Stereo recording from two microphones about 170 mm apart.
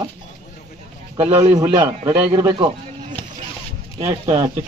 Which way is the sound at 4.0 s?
20° right (ahead or behind).